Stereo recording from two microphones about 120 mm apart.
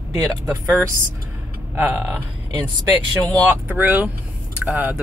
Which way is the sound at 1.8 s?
15° right (ahead or behind).